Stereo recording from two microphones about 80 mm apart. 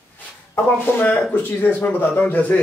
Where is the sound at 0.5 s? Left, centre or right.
Left.